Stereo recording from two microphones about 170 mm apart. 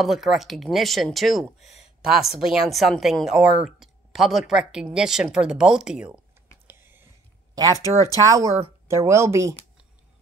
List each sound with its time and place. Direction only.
0.0 s speech: centre (ahead or behind)
6.7 s a sound: 15° right (ahead or behind)
7.5 s speech: 20° right (ahead or behind)